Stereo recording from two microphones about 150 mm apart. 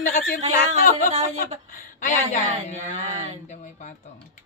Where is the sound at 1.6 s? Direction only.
65° left (ahead or behind).